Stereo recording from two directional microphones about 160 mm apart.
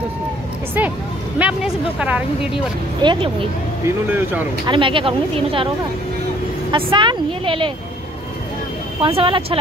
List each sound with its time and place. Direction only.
1.4 s speech: 10° right (ahead or behind)
3.0 s speech: 30° right (ahead or behind)
3.8 s speech: 10° right (ahead or behind)
4.6 s speech: 30° right (ahead or behind)
6.7 s speech: 30° right (ahead or behind)
9.0 s speech: 35° right (ahead or behind)